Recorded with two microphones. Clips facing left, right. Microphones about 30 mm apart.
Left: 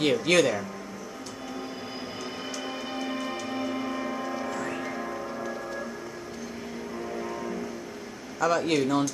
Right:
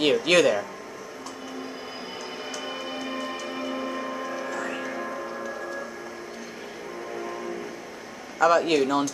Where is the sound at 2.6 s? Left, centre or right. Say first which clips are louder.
Even; centre.